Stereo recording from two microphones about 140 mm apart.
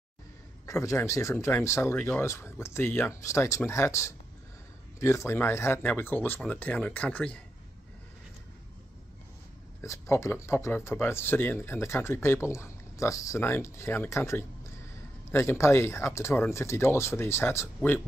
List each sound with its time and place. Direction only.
0.7 s speech: 20° left (ahead or behind)
9.8 s speech: 20° left (ahead or behind)